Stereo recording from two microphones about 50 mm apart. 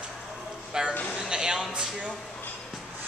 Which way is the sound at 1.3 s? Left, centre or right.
Centre.